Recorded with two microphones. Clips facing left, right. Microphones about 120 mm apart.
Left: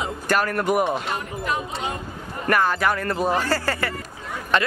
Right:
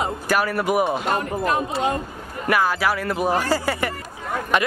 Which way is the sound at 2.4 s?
5° right (ahead or behind).